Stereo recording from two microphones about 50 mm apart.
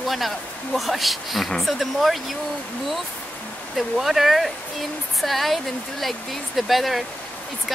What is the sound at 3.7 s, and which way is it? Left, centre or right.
Speech, centre.